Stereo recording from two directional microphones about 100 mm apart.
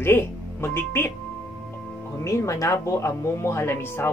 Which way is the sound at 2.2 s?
30° left (ahead or behind).